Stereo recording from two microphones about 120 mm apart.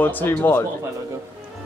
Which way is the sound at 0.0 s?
15° left (ahead or behind).